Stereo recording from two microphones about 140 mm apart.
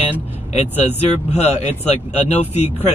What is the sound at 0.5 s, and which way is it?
Speech, 50° left (ahead or behind).